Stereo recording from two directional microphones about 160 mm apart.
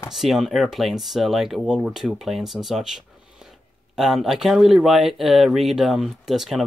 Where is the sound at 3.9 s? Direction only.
Centre (ahead or behind).